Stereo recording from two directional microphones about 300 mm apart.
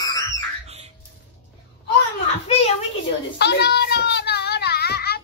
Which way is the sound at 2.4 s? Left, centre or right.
Left.